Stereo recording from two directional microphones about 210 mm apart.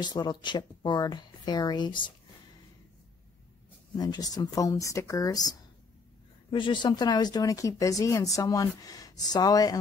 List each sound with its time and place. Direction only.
0.0 s speech: 20° left (ahead or behind)
3.9 s speech: 20° left (ahead or behind)